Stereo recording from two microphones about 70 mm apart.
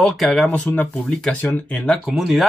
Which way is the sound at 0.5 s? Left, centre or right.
Left.